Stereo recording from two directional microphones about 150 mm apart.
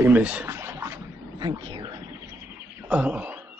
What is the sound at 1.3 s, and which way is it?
Wild animals, 30° right (ahead or behind).